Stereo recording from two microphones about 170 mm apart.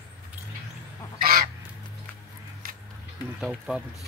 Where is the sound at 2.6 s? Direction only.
55° right (ahead or behind).